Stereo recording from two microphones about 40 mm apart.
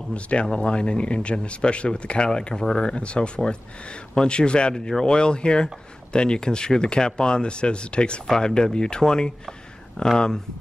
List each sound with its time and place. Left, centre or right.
0.1 s speech: left
2.9 s speech: left